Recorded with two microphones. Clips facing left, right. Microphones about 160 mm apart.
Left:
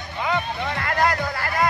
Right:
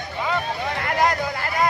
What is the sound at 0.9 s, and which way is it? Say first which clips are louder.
Music: right 1 dB; 20° right (ahead or behind).